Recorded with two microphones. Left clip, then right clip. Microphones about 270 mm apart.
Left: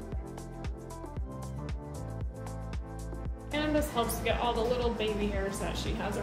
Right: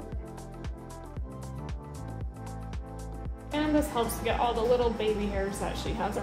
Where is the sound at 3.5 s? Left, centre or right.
Right.